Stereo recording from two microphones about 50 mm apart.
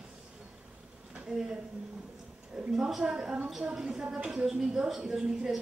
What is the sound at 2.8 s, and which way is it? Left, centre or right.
Speech, centre.